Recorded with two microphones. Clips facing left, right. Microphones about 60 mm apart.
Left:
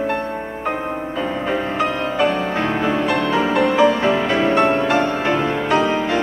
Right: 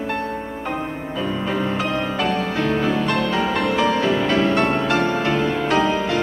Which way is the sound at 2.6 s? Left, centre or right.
Centre.